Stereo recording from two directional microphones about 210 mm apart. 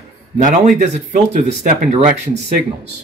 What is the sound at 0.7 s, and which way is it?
Speech, 35° right (ahead or behind).